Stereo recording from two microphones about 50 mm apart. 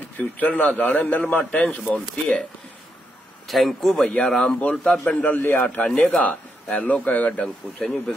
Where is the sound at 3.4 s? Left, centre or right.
Centre.